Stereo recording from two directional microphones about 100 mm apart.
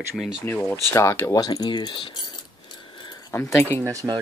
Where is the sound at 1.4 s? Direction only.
45° left (ahead or behind).